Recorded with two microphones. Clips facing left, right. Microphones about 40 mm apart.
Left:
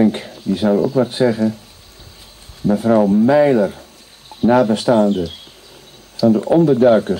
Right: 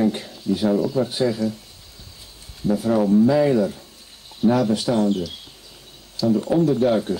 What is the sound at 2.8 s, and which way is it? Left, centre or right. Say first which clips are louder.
Speech: left 4 dB; left.